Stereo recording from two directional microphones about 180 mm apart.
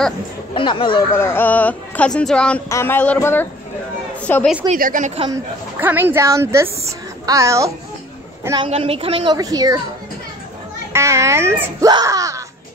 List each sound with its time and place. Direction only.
0.6 s speech: 25° left (ahead or behind)
1.1 s speech: 10° left (ahead or behind)
4.7 s a woman's voice: 50° right (ahead or behind)
5.3 s a woman's voice: 10° right (ahead or behind)
8.6 s a woman's voice: 35° right (ahead or behind)
9.3 s speech: 20° right (ahead or behind)
10.9 s a woman's voice: 15° right (ahead or behind)